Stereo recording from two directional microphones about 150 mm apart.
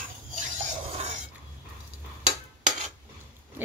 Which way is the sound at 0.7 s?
50° right (ahead or behind).